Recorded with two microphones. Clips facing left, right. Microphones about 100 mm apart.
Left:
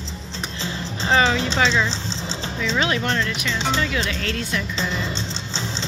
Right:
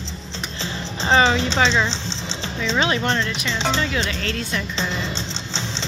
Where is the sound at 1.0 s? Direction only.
Centre (ahead or behind).